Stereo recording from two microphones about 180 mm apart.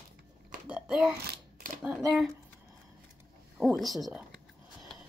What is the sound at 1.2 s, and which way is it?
Camera, 60° right (ahead or behind).